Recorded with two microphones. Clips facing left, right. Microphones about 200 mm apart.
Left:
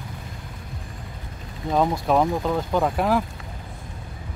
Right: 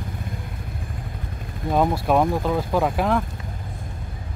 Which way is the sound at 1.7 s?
5° right (ahead or behind).